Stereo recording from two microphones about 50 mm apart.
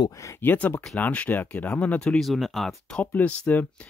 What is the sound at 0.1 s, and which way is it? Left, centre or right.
Speech, left.